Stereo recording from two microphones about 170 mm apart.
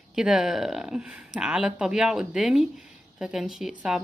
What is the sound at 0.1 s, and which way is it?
A woman's voice, 5° right (ahead or behind).